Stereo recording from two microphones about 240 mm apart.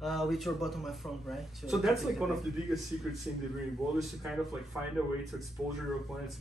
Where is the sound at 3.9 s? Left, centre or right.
Centre.